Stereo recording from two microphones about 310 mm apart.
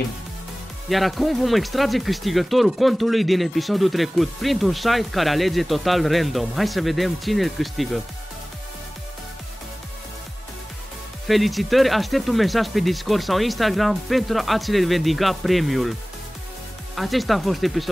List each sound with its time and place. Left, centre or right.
0.8 s speech: centre
11.2 s speech: centre
16.9 s speech: centre